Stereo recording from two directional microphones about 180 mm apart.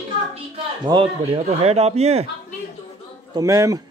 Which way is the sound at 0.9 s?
30° right (ahead or behind).